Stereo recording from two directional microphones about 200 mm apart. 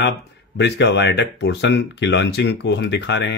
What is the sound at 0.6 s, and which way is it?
Speech, 60° left (ahead or behind).